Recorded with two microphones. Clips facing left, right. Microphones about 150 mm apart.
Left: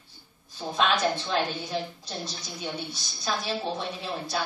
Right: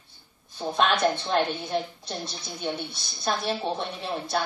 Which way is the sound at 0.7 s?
55° right (ahead or behind).